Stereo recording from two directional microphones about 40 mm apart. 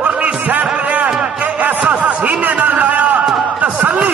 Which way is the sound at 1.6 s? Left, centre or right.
Right.